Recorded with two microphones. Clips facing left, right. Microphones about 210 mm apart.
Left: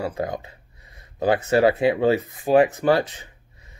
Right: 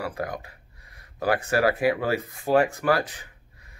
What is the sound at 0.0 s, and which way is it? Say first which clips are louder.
Speech: left 4 dB; 25° left (ahead or behind).